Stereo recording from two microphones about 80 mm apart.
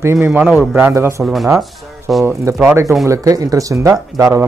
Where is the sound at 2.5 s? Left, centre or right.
Right.